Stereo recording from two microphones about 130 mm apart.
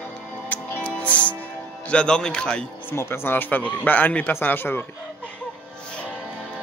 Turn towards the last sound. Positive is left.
turn(degrees=15)  # may be behind; listen again after turning